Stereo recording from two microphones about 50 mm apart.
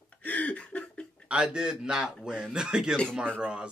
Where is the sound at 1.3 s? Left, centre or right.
Centre.